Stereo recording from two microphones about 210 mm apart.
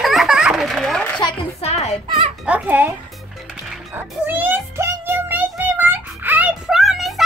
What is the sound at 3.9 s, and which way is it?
Child singing, 10° right (ahead or behind).